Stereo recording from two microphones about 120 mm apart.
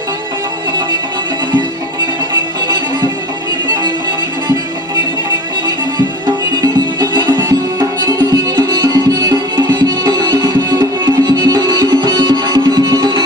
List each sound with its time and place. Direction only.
5.9 s music: 35° right (ahead or behind)